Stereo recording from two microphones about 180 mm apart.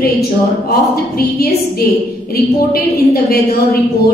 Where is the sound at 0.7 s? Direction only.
55° left (ahead or behind).